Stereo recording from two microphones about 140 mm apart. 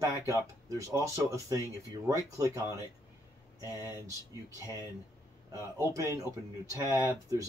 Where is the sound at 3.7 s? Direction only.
25° right (ahead or behind).